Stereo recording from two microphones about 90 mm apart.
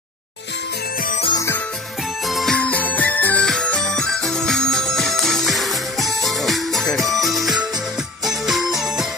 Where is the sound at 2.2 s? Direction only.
Centre (ahead or behind).